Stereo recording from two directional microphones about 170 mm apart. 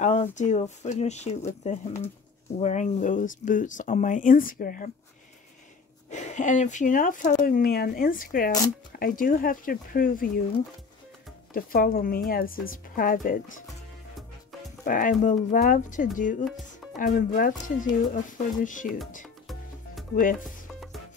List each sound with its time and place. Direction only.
0.0 s speech: 45° left (ahead or behind)
6.0 s speech: 45° left (ahead or behind)
11.5 s speech: 60° left (ahead or behind)
14.9 s speech: 50° left (ahead or behind)
20.2 s speech: 55° left (ahead or behind)